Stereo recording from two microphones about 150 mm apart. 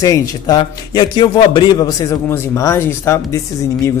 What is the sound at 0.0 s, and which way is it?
A man's voice, 20° left (ahead or behind).